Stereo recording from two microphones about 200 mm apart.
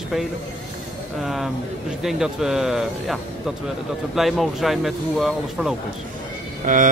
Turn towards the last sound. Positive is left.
turn(degrees=-40)  # may be behind; listen again after turning